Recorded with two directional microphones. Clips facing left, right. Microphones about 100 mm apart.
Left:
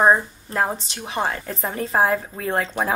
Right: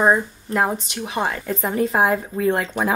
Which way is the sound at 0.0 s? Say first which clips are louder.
Left 1 dB; 30° left (ahead or behind).